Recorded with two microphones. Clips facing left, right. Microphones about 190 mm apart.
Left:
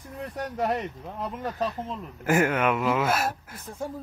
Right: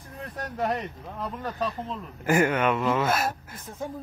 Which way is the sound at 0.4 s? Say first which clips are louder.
Left 1 dB; 10° left (ahead or behind).